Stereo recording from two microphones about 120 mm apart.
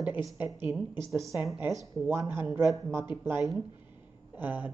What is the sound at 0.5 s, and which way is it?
Speech, 25° right (ahead or behind).